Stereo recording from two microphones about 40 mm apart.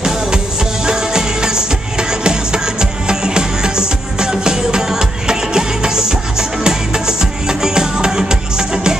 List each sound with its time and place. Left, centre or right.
0.8 s music: centre